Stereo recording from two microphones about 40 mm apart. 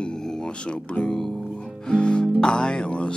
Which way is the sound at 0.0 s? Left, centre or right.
Centre.